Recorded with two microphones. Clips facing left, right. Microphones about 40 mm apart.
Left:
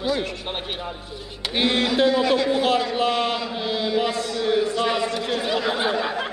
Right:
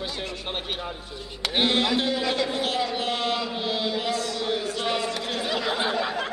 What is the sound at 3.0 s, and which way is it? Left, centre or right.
Speech, left.